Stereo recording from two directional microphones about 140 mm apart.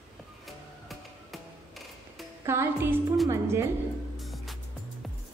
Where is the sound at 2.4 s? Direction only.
20° right (ahead or behind).